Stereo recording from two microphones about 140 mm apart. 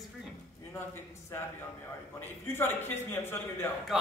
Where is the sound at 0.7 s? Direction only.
15° left (ahead or behind).